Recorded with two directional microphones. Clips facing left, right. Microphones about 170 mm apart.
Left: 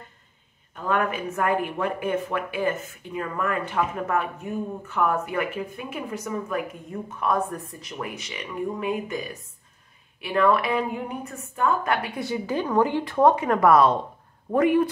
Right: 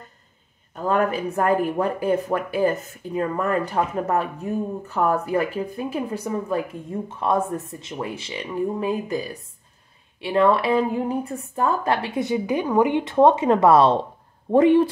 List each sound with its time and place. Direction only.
0.7 s a woman's voice: 35° right (ahead or behind)